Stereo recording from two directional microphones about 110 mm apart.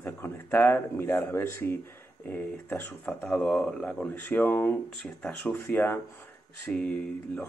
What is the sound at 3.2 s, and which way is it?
Speech, 5° left (ahead or behind).